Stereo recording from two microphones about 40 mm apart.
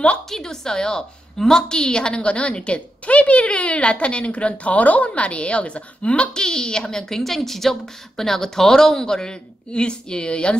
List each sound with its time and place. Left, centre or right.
0.3 s a woman's voice: centre; by 6.3 s left
6.3 s speech: centre